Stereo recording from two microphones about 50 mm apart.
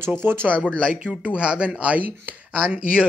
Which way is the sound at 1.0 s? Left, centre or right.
Right.